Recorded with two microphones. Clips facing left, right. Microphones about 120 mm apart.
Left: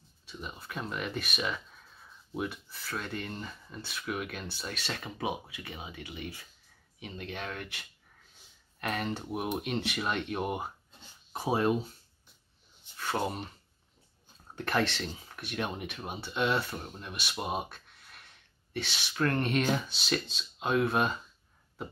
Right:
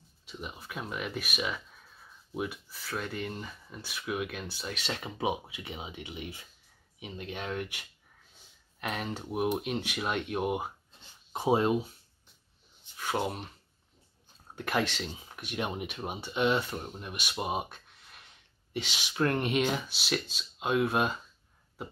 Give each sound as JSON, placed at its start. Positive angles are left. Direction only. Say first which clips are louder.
{"t": 0.2, "sound": "speech", "louder": "right 1 dB", "side_deg": -15}
{"t": 8.8, "sound": "speech", "louder": "left 2 dB", "side_deg": -10}
{"t": 12.9, "sound": "speech", "louder": "even", "side_deg": -10}
{"t": 14.5, "sound": "speech", "louder": "left 1 dB", "side_deg": -10}